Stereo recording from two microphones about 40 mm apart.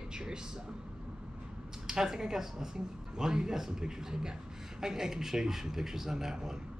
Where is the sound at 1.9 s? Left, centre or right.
Centre.